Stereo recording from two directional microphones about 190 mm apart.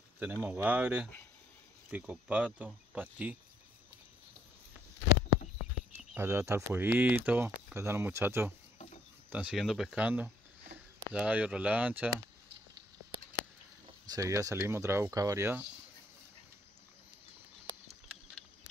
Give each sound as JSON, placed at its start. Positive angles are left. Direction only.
{"t": 0.2, "sound": "speech", "side_deg": -10}
{"t": 6.1, "sound": "speech", "side_deg": -15}
{"t": 8.7, "sound": "pig", "side_deg": 35}
{"t": 9.3, "sound": "speech", "side_deg": -5}
{"t": 14.1, "sound": "speech", "side_deg": -15}